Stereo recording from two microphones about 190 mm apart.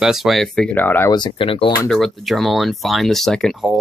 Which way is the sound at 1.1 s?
25° left (ahead or behind).